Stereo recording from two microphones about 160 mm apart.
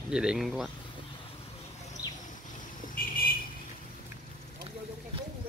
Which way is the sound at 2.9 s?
65° left (ahead or behind).